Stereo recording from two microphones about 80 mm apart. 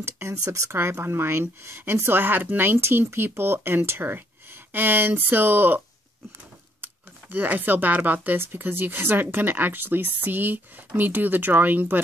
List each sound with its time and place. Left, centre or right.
0.0 s speech: right
6.8 s speech: right